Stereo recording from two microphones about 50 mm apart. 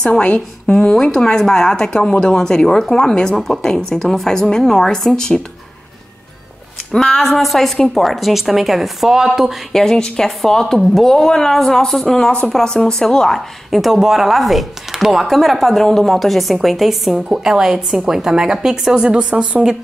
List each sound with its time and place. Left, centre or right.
0.0 s a woman's voice: centre
6.9 s speech: centre
7.2 s speech: centre
9.7 s speech: centre
13.7 s speech: centre
19.0 s speech: right